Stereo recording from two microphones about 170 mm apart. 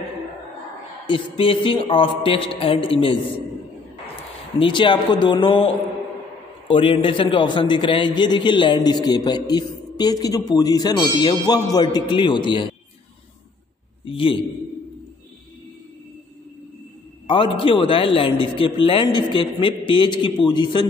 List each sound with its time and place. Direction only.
1.0 s speech: 30° left (ahead or behind)
4.6 s a man's voice: 30° left (ahead or behind)
6.7 s a man's voice: 30° left (ahead or behind)
14.0 s a man's voice: 30° left (ahead or behind)
17.3 s a man's voice: 30° left (ahead or behind)